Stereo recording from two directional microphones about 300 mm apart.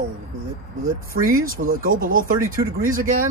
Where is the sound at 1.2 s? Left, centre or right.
Right.